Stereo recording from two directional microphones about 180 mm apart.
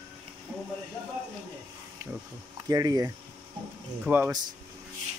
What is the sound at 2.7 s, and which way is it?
Speech, 20° right (ahead or behind).